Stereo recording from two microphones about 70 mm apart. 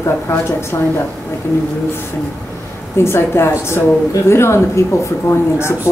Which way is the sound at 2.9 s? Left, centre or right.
Left.